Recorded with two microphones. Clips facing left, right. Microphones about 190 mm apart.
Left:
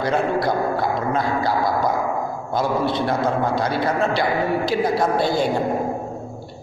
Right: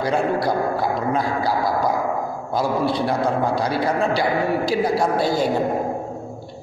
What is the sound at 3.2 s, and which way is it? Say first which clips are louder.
A man's voice: even; 35° right (ahead or behind).